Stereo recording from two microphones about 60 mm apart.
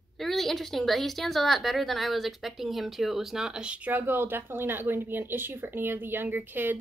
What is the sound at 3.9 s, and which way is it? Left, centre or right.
Speech, right.